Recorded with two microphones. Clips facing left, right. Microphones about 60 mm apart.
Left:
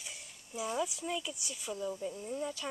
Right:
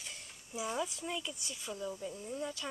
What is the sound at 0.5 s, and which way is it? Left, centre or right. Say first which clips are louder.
Speech: left 2 dB; centre.